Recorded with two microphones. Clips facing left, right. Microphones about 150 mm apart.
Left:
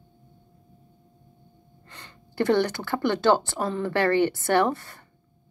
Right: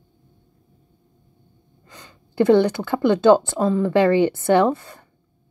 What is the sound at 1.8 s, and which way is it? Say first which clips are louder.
A woman's voice: right 2 dB; 10° right (ahead or behind).